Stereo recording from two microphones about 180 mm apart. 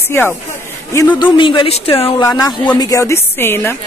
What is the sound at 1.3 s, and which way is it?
Speech, 25° left (ahead or behind).